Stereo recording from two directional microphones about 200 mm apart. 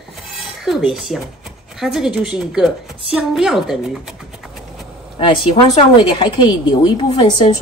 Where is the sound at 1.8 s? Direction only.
5° right (ahead or behind).